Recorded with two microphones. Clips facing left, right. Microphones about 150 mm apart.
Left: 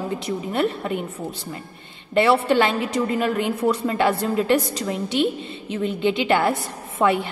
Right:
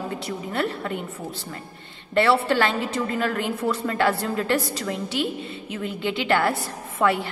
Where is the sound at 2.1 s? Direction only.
15° left (ahead or behind).